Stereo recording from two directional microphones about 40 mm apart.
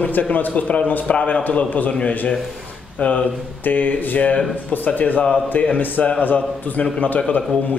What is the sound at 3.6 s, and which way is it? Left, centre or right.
Speech, left.